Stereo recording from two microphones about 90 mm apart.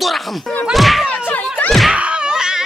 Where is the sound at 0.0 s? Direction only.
Centre (ahead or behind).